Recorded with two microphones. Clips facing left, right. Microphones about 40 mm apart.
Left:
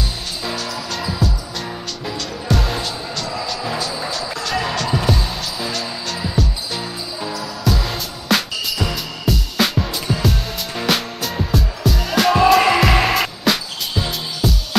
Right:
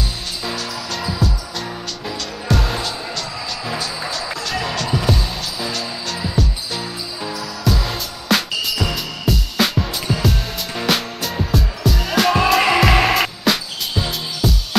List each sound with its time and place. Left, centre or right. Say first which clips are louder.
0.5 s music: left 1 dB; centre